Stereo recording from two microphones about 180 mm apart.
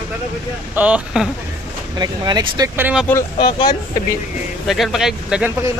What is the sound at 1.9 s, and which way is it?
Speech, 20° right (ahead or behind).